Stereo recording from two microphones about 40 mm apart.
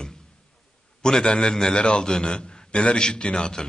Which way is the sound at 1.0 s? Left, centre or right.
Centre.